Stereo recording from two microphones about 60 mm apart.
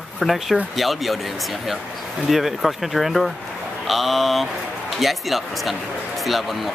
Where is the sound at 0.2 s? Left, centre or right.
Centre.